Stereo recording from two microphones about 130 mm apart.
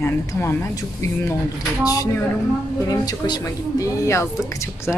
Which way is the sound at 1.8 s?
30° left (ahead or behind).